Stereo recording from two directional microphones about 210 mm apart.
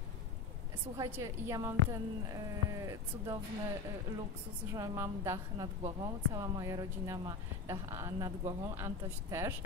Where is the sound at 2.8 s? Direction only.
15° right (ahead or behind).